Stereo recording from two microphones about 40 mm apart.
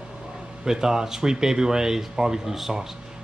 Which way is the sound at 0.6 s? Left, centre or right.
Centre.